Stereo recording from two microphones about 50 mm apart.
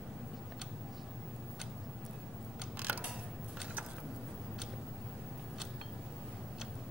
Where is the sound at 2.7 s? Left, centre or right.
Right.